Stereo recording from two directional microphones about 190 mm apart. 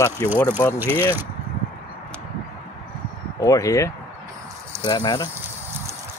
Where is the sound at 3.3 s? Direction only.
20° left (ahead or behind).